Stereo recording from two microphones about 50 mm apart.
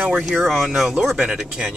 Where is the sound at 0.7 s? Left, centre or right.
Centre.